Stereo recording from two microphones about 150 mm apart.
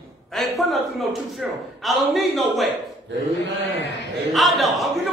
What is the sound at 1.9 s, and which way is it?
Speech, centre (ahead or behind).